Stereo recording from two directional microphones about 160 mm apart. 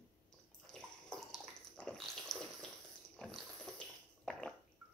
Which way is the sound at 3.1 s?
Centre (ahead or behind).